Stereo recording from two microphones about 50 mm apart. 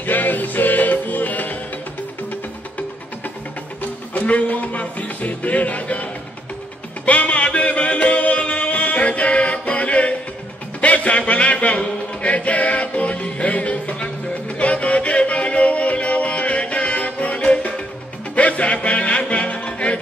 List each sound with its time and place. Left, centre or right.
0.0 s music: left
4.1 s music: left
7.1 s music: left
10.8 s a sound: left
14.6 s music: left